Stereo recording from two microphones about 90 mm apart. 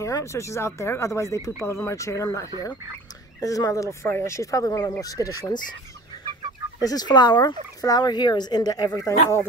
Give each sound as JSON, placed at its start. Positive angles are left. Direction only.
{"t": 0.0, "sound": "speech", "side_deg": 30}
{"t": 6.8, "sound": "speech", "side_deg": 45}